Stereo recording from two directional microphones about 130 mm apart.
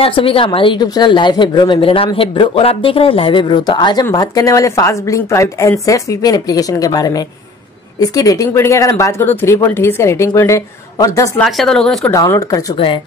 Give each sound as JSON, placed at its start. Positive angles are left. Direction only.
{"t": 0.0, "sound": "speech", "side_deg": 45}
{"t": 11.3, "sound": "speech", "side_deg": 5}
{"t": 12.0, "sound": "speech", "side_deg": 20}
{"t": 12.7, "sound": "speech", "side_deg": 45}